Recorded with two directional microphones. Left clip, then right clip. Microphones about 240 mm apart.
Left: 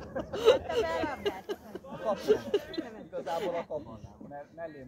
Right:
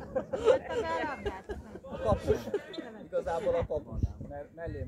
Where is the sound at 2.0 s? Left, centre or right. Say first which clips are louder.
Right 2 dB; right.